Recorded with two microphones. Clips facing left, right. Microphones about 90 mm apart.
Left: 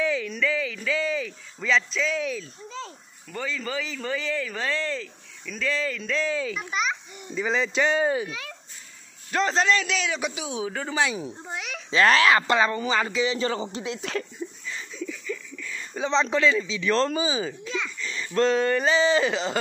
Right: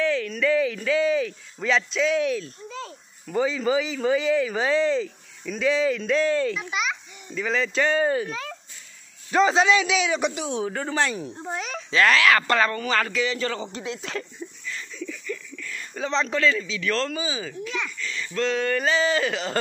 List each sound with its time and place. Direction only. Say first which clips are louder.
0.0 s a sound: right 2 dB; 10° left (ahead or behind)
0.4 s a man's voice: right 5 dB; 5° right (ahead or behind)
7.3 s speech: even; 15° left (ahead or behind)
9.3 s a man's voice: right 4 dB; 5° right (ahead or behind)
11.9 s speech: even; 30° left (ahead or behind)
12.4 s speech: even; 15° left (ahead or behind)
13.8 s speech: even; 30° right (ahead or behind)
14.7 s a sound: even; 10° left (ahead or behind)
16.0 s speech: left 1 dB; 20° left (ahead or behind)
18.1 s speech: left 4 dB; 30° left (ahead or behind)